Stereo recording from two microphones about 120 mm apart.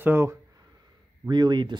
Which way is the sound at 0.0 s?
20° right (ahead or behind).